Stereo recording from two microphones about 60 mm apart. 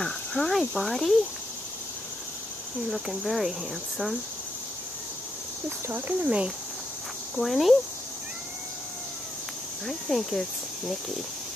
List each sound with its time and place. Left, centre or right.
0.0 s speech: centre
2.9 s speech: centre
5.9 s speech: right
6.2 s speech: centre
7.3 s speech: centre
9.8 s speech: centre